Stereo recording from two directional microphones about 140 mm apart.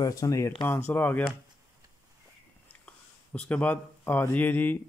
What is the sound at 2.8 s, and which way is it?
A man's voice, 10° left (ahead or behind).